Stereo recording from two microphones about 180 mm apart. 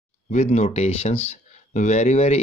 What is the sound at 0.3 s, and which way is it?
Speech, 40° left (ahead or behind).